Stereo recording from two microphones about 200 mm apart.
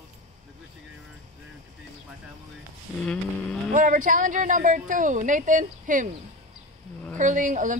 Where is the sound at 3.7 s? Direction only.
40° right (ahead or behind).